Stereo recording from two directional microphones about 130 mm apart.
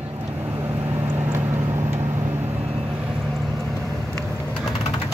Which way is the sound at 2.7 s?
45° right (ahead or behind).